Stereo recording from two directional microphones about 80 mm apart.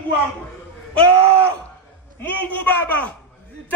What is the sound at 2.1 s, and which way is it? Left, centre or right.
Speech, left.